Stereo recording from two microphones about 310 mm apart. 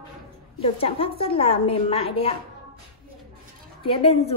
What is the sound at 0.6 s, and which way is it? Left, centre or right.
A woman's voice, centre.